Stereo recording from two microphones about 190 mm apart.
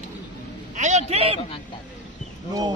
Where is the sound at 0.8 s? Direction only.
35° right (ahead or behind).